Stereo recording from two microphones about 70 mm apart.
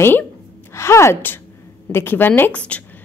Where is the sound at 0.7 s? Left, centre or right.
Left.